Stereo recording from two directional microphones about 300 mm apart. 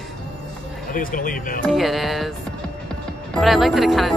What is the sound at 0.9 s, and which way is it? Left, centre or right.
Speech, left.